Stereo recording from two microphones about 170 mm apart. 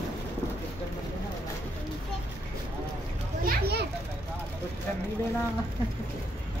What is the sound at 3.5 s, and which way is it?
Children playing, 70° right (ahead or behind).